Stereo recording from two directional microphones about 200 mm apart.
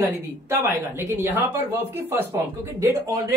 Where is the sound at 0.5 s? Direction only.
15° right (ahead or behind).